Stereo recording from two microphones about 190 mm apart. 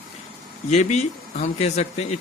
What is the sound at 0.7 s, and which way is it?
Speech, 35° left (ahead or behind).